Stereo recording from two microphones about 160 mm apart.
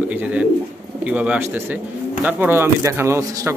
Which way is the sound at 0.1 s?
10° right (ahead or behind).